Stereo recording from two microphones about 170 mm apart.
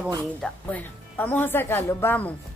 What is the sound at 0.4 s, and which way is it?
Speech, 10° left (ahead or behind).